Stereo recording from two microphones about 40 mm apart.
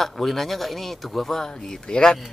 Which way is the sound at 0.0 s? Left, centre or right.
Centre.